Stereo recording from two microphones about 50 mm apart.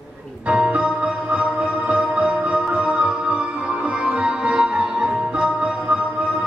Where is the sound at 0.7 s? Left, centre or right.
Right.